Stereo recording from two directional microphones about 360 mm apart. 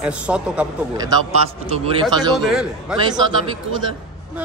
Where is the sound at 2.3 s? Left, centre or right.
Centre.